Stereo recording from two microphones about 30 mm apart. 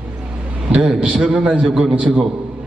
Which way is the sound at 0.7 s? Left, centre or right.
Right.